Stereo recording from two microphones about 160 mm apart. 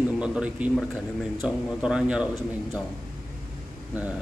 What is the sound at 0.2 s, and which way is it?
A man's voice, 5° right (ahead or behind).